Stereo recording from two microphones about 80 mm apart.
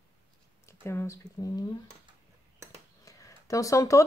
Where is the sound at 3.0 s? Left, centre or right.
Left.